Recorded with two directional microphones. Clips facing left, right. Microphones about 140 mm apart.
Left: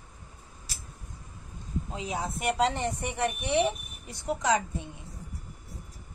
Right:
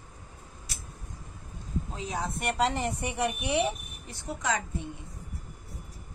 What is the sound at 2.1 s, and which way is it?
A woman's voice, 5° left (ahead or behind).